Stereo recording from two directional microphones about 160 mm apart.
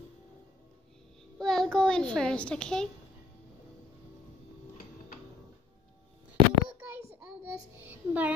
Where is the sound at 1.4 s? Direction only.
5° left (ahead or behind).